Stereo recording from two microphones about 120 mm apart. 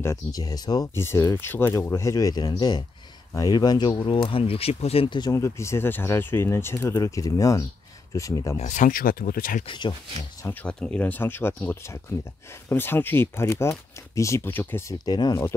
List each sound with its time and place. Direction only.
0.0 s speech: 25° left (ahead or behind)
0.9 s speech: 20° left (ahead or behind); by 5.3 s 45° left (ahead or behind)
5.3 s speech: 25° left (ahead or behind)
8.5 s speech: 85° left
9.7 s speech: 40° left (ahead or behind)
10.4 s speech: 15° left (ahead or behind)
15.0 s speech: 35° left (ahead or behind)